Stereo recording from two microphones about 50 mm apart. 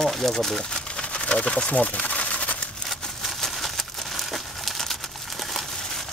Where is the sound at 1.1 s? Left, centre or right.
Left.